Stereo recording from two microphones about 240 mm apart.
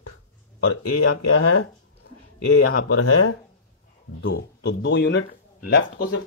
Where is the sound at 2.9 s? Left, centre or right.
Left.